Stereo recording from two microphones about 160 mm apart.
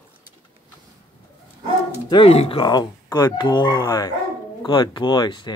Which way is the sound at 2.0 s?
35° left (ahead or behind).